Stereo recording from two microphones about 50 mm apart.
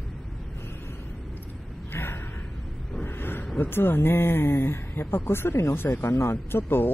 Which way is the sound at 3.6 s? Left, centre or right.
Left.